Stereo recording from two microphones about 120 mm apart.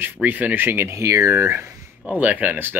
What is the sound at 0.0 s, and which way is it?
Speech, 15° right (ahead or behind).